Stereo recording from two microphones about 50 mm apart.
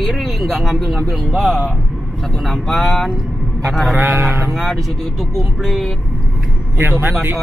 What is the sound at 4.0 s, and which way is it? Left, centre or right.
Speech, right.